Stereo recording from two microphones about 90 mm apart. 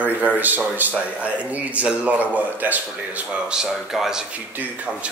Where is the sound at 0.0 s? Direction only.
20° right (ahead or behind).